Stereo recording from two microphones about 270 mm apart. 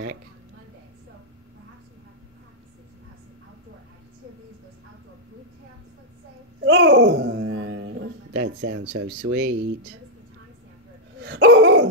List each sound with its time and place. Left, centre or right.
6.6 s a sound: right
8.5 s speech: right
11.1 s dog: right